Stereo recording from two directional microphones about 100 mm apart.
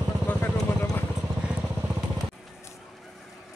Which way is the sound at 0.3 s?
20° left (ahead or behind).